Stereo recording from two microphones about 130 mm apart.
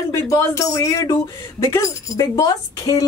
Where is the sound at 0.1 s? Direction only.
20° left (ahead or behind).